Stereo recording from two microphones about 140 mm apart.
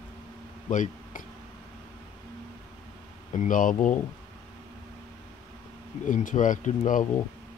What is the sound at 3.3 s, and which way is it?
Speech, 65° left (ahead or behind).